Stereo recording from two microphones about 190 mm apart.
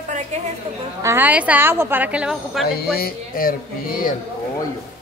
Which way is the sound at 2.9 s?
50° left (ahead or behind).